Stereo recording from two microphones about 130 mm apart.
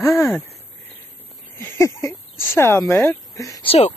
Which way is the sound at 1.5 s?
25° left (ahead or behind).